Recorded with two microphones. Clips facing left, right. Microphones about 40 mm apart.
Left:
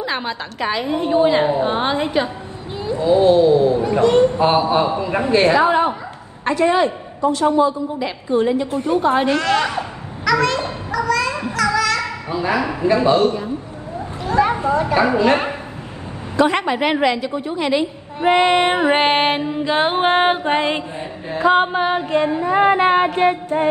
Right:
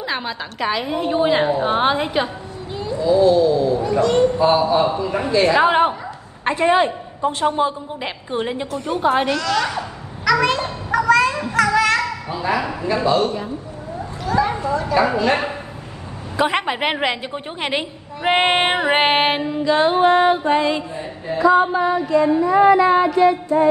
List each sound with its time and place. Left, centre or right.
0.0 s a woman's voice: centre
1.7 s music: centre
2.7 s a sound: left
3.0 s a man's voice: left
5.6 s a woman's voice: right
6.4 s a woman's voice: right
9.3 s a woman's voice: left
10.6 s a sound: right
12.5 s a man's voice: left
14.2 s a man's voice: left
16.3 s a woman's voice: centre; by 18.9 s right
18.9 s music: centre
19.6 s a man's voice: left
21.3 s female singing: left